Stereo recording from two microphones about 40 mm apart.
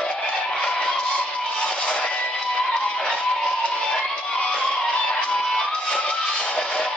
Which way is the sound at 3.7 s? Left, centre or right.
Centre.